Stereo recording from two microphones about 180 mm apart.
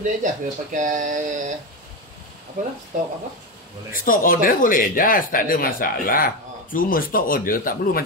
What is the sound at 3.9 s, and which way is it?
Speech, 50° left (ahead or behind).